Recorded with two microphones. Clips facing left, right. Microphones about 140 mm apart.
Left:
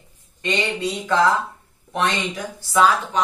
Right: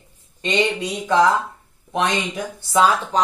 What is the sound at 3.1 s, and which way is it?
Speech, 35° right (ahead or behind).